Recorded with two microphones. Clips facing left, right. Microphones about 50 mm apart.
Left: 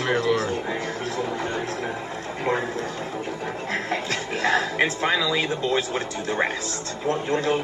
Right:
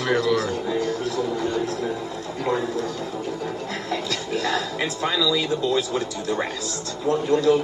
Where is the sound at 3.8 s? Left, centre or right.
Left.